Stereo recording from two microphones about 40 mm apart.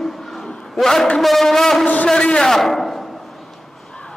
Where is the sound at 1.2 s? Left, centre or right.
Centre.